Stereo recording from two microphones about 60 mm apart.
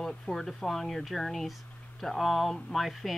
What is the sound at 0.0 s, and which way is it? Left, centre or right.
Speech, centre.